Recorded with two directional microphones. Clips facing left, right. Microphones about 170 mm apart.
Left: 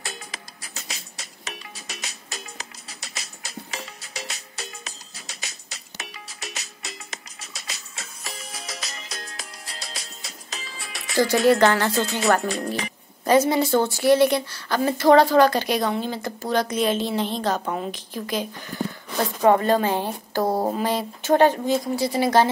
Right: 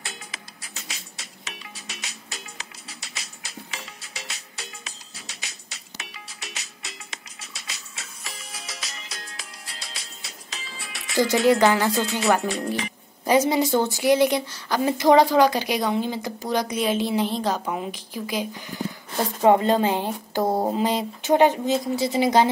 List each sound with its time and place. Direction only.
0.0 s music: 40° left (ahead or behind)
11.4 s speech: 15° right (ahead or behind)
12.4 s speech: 40° left (ahead or behind)
13.2 s speech: 15° right (ahead or behind)
19.4 s a woman's voice: 20° right (ahead or behind)